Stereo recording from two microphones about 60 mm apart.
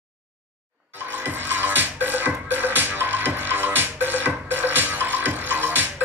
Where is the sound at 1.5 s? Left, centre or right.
Right.